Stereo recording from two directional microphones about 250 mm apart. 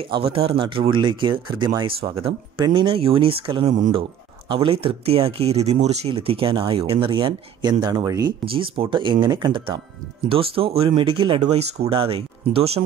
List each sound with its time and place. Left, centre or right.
0.0 s speech: right
3.7 s speech: right